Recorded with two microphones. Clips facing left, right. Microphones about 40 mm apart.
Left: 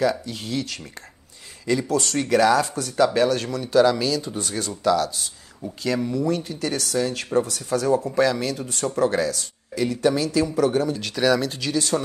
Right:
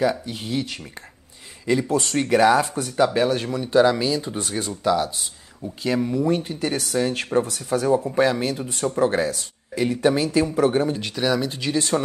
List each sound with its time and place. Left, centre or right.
0.2 s speech: centre
11.1 s speech: centre
11.7 s speech: right